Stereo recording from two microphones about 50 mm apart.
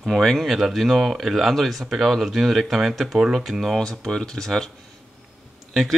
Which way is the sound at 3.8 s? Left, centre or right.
Centre.